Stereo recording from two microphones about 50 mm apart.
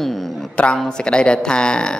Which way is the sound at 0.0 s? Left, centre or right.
Centre.